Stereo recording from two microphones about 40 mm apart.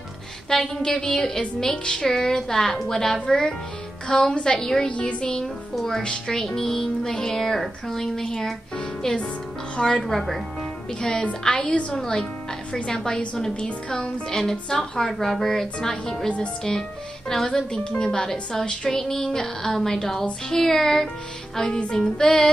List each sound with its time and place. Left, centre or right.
0.5 s music: centre
2.0 s music: centre
4.8 s a woman's voice: left
5.2 s music: centre
9.0 s a woman's voice: left
9.9 s speech: centre
11.0 s music: centre
11.4 s a woman's voice: left
12.7 s music: centre
13.6 s a woman's voice: left
14.3 s music: centre
17.3 s music: centre